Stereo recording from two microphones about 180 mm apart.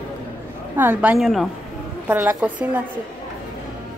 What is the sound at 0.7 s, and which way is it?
A woman's voice, 10° right (ahead or behind).